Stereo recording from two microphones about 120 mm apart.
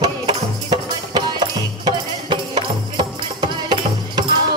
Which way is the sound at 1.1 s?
35° right (ahead or behind).